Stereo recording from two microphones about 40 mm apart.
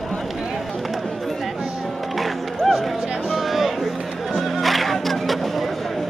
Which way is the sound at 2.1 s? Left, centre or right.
Centre.